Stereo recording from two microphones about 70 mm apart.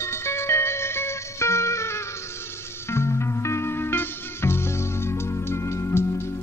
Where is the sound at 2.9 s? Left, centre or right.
Left.